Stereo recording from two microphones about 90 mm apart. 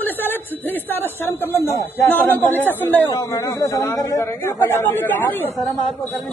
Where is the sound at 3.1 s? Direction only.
40° left (ahead or behind); by 5.6 s 25° left (ahead or behind).